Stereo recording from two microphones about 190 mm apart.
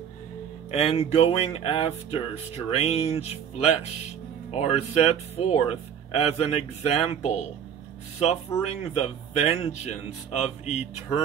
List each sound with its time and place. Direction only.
0.7 s speech: 30° left (ahead or behind)
8.6 s speech: 35° left (ahead or behind)